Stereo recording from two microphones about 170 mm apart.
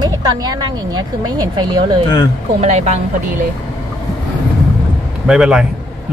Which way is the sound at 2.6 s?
40° right (ahead or behind).